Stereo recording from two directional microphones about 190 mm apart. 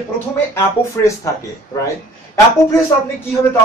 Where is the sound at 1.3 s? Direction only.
15° left (ahead or behind).